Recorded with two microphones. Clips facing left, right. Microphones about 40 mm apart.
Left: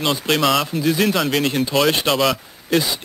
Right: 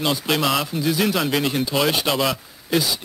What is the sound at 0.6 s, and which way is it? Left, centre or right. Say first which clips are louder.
Speech: left 3 dB; centre.